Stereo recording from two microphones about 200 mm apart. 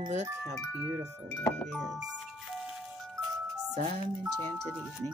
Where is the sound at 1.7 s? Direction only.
5° right (ahead or behind).